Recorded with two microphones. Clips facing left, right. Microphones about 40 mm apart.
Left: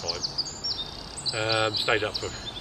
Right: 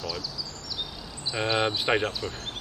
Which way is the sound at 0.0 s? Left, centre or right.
Right.